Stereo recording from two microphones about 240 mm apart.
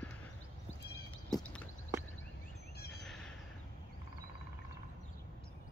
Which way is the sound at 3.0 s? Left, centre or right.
Centre.